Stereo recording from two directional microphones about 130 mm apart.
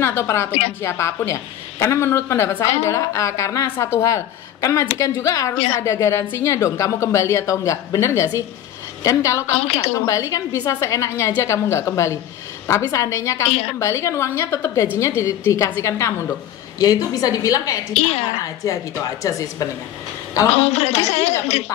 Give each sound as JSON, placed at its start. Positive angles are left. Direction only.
{"t": 0.0, "sound": "a woman's voice", "side_deg": 20}
{"t": 13.5, "sound": "a woman's voice", "side_deg": 55}
{"t": 13.7, "sound": "a woman's voice", "side_deg": 20}
{"t": 17.9, "sound": "a woman's voice", "side_deg": 55}
{"t": 18.4, "sound": "a woman's voice", "side_deg": 25}
{"t": 20.6, "sound": "a woman's voice", "side_deg": 55}